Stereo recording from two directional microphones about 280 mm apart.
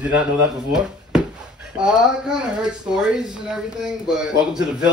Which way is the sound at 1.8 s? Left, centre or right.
Centre.